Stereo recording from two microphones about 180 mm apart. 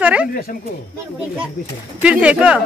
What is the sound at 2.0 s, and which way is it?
Speech, 5° right (ahead or behind).